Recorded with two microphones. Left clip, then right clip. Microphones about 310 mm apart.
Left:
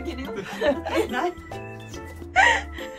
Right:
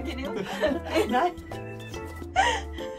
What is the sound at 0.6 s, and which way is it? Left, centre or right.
Speech, centre.